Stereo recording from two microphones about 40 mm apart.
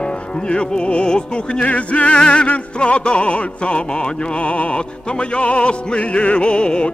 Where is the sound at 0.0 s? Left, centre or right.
Left.